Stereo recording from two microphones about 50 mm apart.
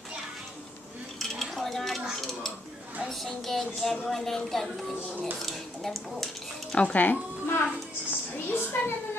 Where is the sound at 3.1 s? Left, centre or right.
Centre.